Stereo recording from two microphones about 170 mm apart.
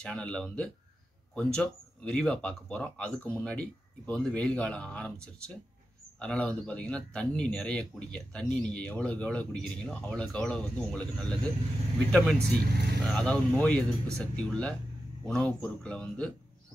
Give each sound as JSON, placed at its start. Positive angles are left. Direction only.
{"t": 0.0, "sound": "a man's voice", "side_deg": 5}
{"t": 12.4, "sound": "speech", "side_deg": -70}
{"t": 13.0, "sound": "a man's voice", "side_deg": 5}